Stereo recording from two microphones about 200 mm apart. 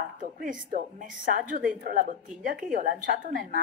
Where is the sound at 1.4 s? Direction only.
40° right (ahead or behind).